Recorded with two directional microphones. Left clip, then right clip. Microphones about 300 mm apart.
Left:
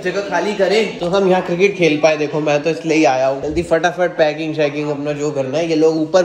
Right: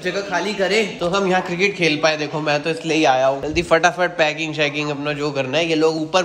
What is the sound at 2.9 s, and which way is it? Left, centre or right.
Speech, right.